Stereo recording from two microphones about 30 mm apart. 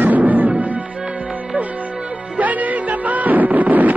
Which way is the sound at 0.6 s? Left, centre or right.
Right.